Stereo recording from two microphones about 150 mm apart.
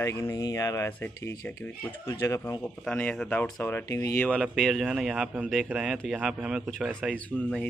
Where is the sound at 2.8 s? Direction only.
5° left (ahead or behind).